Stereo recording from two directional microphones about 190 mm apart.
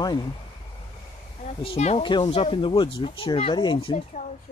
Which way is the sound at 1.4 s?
35° left (ahead or behind).